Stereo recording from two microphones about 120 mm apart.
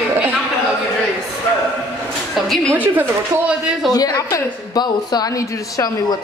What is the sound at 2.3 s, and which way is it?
Speech, 5° left (ahead or behind).